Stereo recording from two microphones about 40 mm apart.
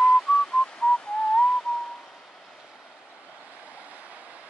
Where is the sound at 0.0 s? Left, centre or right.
Centre.